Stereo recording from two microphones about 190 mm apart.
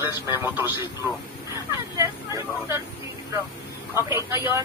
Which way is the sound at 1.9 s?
15° right (ahead or behind).